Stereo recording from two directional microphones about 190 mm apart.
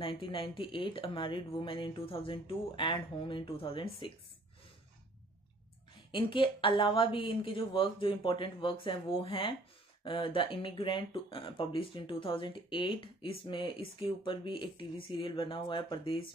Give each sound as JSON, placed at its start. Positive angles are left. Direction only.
{"t": 0.0, "sound": "speech", "side_deg": 25}
{"t": 6.1, "sound": "speech", "side_deg": 25}